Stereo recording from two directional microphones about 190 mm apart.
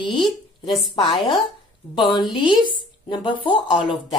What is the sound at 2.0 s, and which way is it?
Speech, 25° left (ahead or behind).